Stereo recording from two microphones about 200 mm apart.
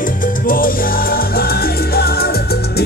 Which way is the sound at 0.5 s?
45° left (ahead or behind).